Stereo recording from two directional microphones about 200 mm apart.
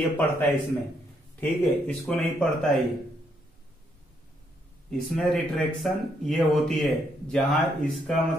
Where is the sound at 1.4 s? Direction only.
5° left (ahead or behind).